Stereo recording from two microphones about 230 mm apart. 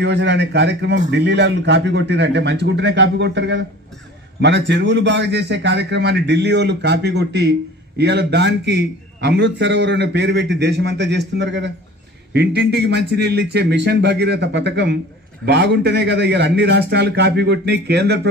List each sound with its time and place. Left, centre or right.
0.0 s a man's voice: right